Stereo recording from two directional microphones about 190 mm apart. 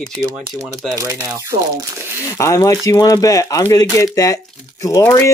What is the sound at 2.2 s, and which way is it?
Speech, 15° left (ahead or behind).